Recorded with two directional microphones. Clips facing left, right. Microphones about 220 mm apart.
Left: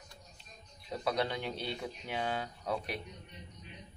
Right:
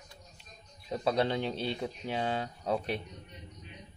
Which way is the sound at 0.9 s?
25° right (ahead or behind).